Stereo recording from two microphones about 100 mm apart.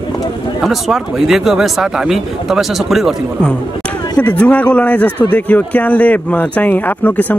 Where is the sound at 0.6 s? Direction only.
5° right (ahead or behind).